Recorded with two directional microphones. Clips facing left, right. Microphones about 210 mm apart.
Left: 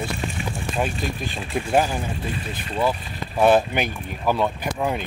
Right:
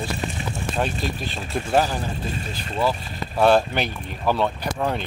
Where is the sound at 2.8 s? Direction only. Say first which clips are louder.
Even; 10° left (ahead or behind).